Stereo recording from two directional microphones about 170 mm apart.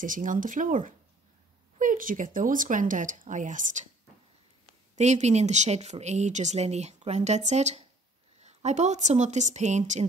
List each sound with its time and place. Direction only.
0.0 s speech: 50° right (ahead or behind)
4.9 s speech: 40° right (ahead or behind)